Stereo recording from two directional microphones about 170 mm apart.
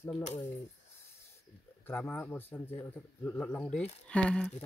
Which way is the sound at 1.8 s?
10° left (ahead or behind).